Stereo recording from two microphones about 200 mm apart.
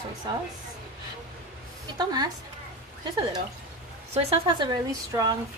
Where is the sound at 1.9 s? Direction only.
20° right (ahead or behind).